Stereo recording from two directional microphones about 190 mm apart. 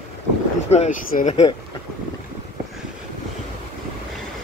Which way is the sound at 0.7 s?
35° left (ahead or behind).